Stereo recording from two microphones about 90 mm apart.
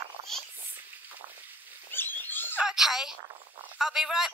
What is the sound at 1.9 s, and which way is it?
Pig, 25° left (ahead or behind).